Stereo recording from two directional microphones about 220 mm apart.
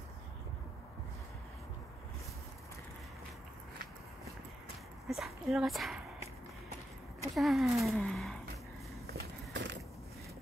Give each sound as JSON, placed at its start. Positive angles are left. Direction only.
{"t": 5.0, "sound": "speech", "side_deg": 0}
{"t": 7.3, "sound": "speech", "side_deg": 0}
{"t": 9.0, "sound": "walk", "side_deg": -50}